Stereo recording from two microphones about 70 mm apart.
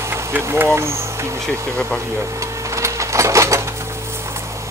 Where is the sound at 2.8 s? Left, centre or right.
Right.